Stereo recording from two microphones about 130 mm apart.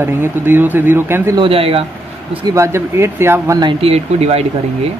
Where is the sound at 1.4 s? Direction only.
45° right (ahead or behind).